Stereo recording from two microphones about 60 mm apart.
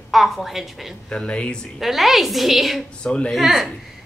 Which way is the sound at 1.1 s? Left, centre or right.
Centre.